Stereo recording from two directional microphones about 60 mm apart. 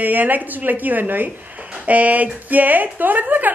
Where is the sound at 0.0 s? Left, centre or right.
Right.